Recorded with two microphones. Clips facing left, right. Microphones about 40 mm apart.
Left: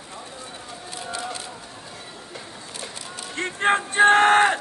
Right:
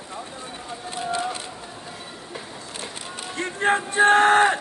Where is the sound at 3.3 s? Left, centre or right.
Left.